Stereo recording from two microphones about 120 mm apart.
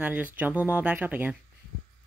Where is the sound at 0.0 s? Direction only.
15° right (ahead or behind).